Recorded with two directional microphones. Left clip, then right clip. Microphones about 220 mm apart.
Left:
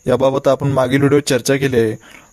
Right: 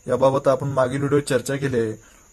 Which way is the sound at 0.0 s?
35° left (ahead or behind).